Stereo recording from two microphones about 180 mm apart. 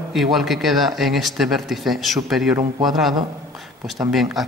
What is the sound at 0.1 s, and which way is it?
Speech, centre (ahead or behind).